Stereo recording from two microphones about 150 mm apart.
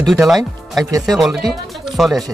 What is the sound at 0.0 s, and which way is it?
Speech, centre (ahead or behind).